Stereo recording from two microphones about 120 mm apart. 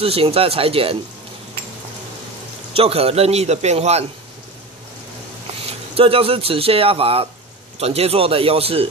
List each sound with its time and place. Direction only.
0.0 s speech: 55° right (ahead or behind)
2.7 s a man's voice: 55° right (ahead or behind)
5.7 s speech: 50° right (ahead or behind)